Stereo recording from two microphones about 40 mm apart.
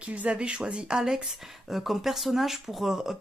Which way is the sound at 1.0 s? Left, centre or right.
Centre.